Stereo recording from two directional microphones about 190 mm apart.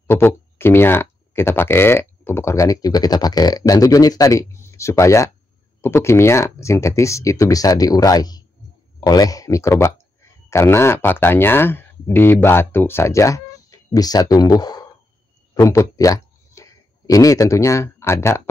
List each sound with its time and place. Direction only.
0.1 s a man's voice: 10° left (ahead or behind)